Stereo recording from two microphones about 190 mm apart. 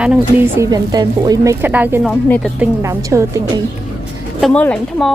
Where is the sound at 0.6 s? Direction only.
20° right (ahead or behind).